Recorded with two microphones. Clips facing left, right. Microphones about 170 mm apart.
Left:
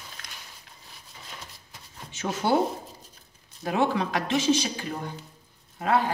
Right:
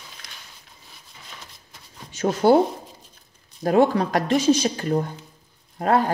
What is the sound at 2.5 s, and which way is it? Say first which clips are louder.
Speech: right 7 dB; 40° right (ahead or behind).